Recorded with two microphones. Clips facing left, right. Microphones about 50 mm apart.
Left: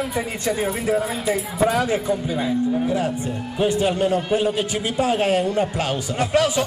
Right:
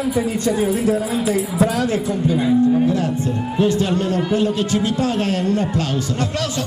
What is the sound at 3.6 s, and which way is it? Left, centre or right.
Speech, centre.